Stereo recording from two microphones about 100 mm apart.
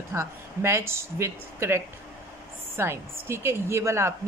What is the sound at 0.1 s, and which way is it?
A woman's voice, 30° right (ahead or behind).